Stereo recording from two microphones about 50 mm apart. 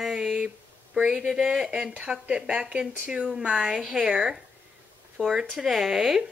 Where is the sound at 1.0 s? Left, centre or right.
Centre.